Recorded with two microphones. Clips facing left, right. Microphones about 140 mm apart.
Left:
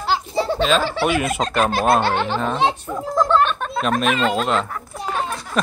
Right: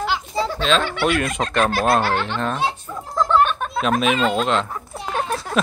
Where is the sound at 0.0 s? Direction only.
35° left (ahead or behind).